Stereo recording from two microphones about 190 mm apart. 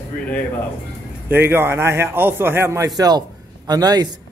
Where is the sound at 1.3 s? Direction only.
10° right (ahead or behind).